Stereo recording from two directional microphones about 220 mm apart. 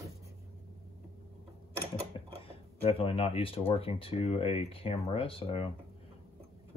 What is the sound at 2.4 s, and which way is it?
Speech, 25° left (ahead or behind).